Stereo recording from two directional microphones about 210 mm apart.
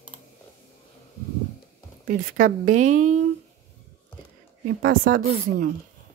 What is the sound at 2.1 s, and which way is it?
Speech, 40° right (ahead or behind).